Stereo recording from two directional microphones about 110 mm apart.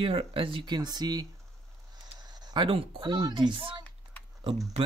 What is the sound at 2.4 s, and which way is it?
Speech, 50° right (ahead or behind).